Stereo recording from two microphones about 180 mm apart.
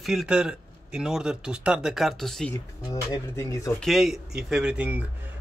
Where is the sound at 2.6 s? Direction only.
20° left (ahead or behind).